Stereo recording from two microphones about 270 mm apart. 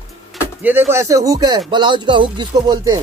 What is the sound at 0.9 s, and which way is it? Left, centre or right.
Speech, centre.